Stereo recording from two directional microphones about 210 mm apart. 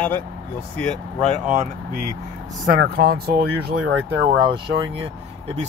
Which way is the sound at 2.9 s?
45° right (ahead or behind).